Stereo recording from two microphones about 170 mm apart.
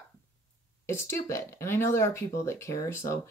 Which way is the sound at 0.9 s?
15° left (ahead or behind).